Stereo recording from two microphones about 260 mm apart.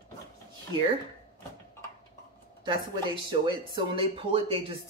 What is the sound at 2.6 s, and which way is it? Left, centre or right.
Speech, centre.